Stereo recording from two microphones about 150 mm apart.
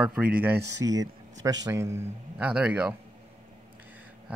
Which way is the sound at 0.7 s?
25° right (ahead or behind).